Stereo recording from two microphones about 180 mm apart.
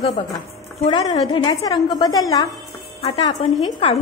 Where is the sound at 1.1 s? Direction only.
25° left (ahead or behind).